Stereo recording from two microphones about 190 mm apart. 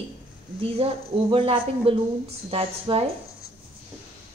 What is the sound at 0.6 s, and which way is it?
A woman's voice, 30° right (ahead or behind).